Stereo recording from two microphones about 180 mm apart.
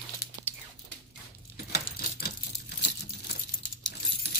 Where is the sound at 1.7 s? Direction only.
65° left (ahead or behind).